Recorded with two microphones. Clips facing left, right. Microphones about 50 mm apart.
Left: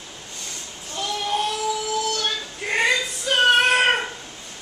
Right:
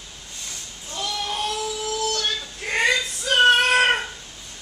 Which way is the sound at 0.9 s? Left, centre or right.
Centre.